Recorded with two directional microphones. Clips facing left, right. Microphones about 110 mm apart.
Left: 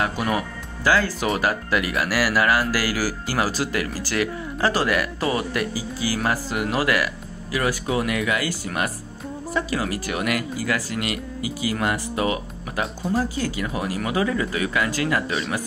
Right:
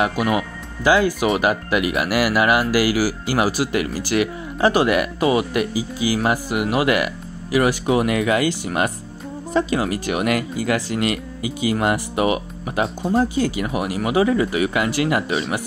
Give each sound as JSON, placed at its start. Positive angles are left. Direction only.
{"t": 0.0, "sound": "speech", "side_deg": -15}
{"t": 12.8, "sound": "speech", "side_deg": -30}
{"t": 13.6, "sound": "speech", "side_deg": -15}